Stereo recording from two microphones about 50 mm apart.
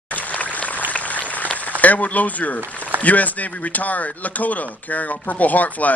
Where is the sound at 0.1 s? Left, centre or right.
Left.